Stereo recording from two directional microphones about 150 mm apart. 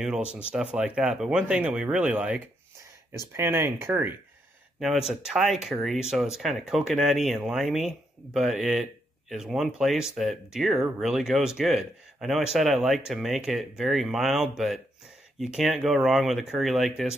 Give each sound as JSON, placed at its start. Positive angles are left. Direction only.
{"t": 0.0, "sound": "speech", "side_deg": -5}
{"t": 4.7, "sound": "speech", "side_deg": 0}